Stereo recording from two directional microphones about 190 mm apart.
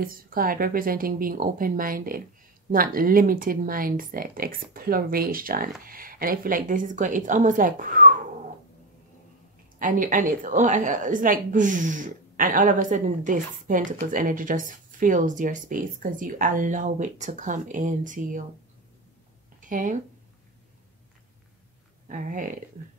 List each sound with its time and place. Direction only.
0.0 s a woman's voice: 50° right (ahead or behind)
9.8 s a woman's voice: 45° right (ahead or behind)
19.7 s a woman's voice: 45° right (ahead or behind)
22.0 s speech: 45° right (ahead or behind)